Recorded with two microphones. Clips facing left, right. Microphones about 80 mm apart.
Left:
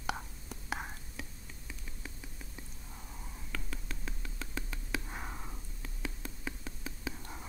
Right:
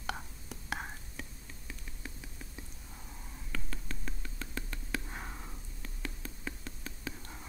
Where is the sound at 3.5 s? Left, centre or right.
Centre.